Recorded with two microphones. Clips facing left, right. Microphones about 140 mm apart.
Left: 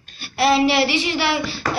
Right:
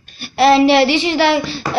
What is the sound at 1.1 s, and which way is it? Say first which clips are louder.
Speech: right 7 dB; 90° right.